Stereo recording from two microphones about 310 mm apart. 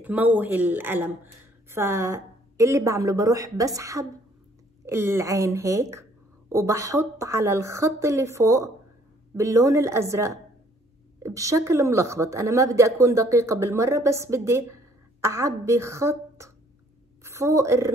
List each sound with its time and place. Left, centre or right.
0.0 s a woman's voice: centre